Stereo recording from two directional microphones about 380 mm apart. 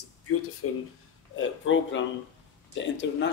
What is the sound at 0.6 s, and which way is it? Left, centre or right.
A man's voice, left.